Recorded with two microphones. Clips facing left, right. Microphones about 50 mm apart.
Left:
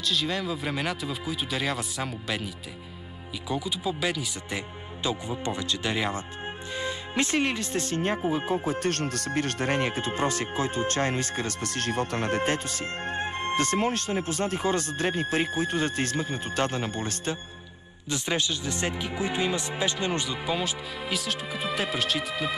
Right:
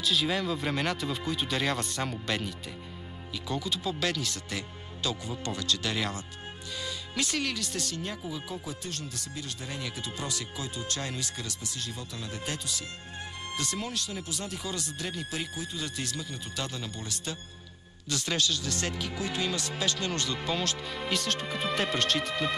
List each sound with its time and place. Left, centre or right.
0.0 s speech: centre; by 17.4 s left
18.1 s speech: left; by 22.6 s centre